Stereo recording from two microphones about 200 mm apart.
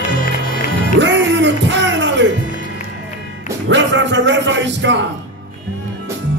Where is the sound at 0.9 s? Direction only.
65° right (ahead or behind).